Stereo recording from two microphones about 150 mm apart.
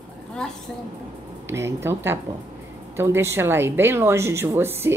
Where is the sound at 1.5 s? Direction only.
20° right (ahead or behind).